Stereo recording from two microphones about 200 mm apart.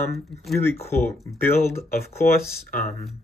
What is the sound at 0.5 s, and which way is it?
Speech, 15° left (ahead or behind).